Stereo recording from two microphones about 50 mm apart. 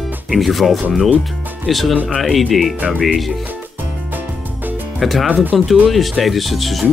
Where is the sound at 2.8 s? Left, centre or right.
Right.